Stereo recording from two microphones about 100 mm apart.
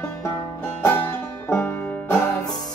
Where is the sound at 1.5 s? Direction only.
25° left (ahead or behind).